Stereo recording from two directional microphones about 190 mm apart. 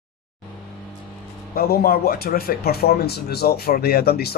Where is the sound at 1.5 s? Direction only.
55° left (ahead or behind).